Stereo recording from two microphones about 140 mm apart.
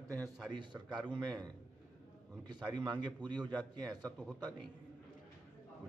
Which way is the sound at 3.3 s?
30° right (ahead or behind).